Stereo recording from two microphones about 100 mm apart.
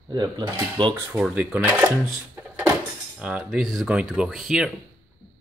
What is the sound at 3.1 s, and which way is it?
Speech, 10° right (ahead or behind).